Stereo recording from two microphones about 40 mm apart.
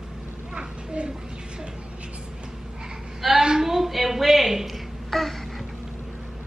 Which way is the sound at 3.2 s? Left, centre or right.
Centre.